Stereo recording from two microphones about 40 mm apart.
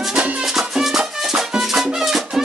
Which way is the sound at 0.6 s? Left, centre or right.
Centre.